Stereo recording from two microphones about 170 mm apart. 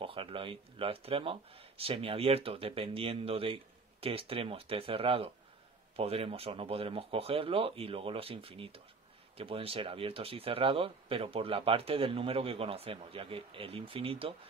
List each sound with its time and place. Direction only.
0.0 s speech: 30° right (ahead or behind)